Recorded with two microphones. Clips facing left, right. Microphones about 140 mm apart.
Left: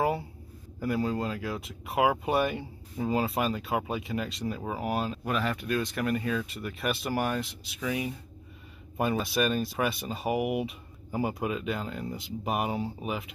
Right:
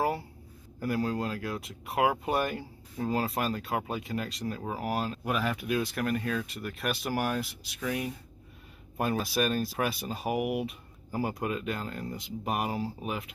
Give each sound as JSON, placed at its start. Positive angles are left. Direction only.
{"t": 0.7, "sound": "speech", "side_deg": 0}